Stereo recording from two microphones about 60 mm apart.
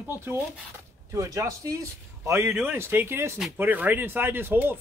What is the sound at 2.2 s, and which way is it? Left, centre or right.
Speech, right.